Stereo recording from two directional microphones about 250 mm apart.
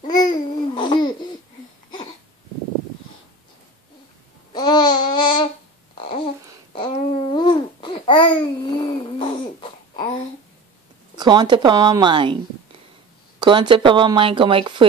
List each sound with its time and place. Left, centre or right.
0.0 s babbling: centre
4.5 s babbling: centre
11.1 s speech: centre
13.4 s speech: centre